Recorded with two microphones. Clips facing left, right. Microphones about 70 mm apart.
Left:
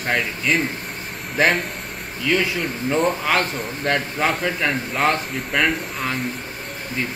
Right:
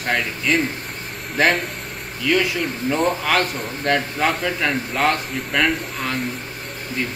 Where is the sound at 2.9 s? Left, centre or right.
Centre.